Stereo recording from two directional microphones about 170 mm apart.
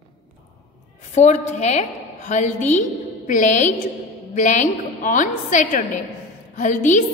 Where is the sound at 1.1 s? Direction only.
45° left (ahead or behind).